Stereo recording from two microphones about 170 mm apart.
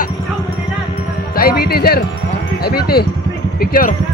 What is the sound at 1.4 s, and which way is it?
Music, 65° left (ahead or behind).